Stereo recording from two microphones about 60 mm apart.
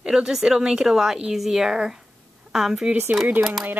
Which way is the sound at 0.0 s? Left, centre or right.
Centre.